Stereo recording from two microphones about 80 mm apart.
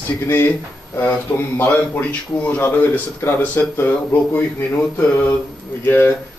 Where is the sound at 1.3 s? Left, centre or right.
Left.